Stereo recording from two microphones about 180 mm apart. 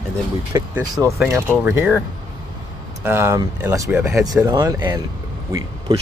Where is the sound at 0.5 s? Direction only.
15° right (ahead or behind).